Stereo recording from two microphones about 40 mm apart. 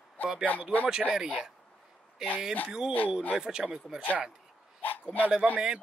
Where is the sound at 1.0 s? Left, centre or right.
Centre.